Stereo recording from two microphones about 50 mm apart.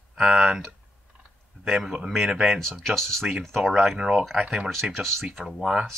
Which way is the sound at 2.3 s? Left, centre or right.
Centre.